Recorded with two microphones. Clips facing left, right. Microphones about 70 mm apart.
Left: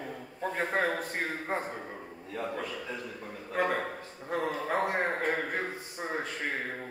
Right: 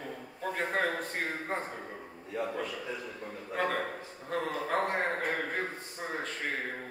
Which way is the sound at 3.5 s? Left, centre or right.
Centre.